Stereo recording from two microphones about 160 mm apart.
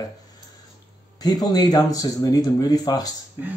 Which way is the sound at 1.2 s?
25° left (ahead or behind).